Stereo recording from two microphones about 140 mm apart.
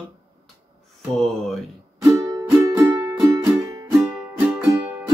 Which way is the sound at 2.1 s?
25° right (ahead or behind).